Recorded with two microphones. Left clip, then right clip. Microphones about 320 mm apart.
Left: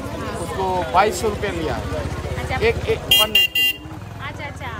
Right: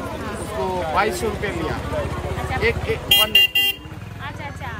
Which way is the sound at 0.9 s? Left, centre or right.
Centre.